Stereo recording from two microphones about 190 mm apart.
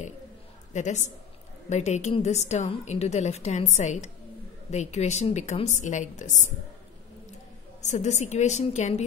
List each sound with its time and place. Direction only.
0.7 s a woman's voice: 40° left (ahead or behind)
7.8 s a woman's voice: 35° left (ahead or behind)